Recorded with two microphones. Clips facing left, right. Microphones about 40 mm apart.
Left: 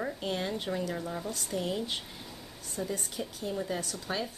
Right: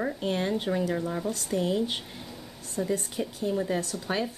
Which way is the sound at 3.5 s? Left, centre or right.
Right.